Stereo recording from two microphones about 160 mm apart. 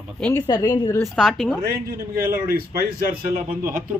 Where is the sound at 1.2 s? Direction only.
5° left (ahead or behind).